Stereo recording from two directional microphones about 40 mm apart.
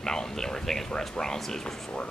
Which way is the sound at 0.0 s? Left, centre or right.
Centre.